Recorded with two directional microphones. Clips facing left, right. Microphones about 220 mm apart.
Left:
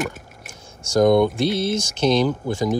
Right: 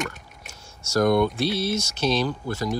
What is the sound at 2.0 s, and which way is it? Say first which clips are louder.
Speech: left 6 dB; 15° left (ahead or behind).